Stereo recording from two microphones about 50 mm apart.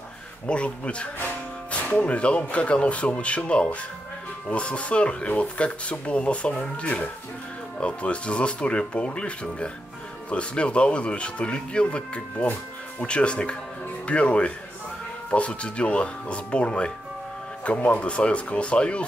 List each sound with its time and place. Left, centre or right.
0.5 s speech: left